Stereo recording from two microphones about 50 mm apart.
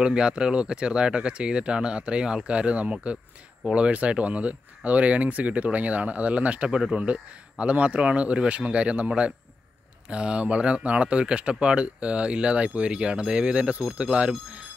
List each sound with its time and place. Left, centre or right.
0.0 s speech: centre